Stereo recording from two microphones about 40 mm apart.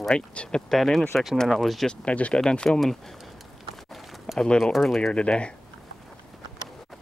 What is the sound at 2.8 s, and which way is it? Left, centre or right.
Speech, centre.